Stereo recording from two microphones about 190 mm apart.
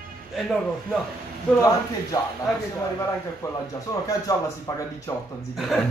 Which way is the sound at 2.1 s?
20° left (ahead or behind).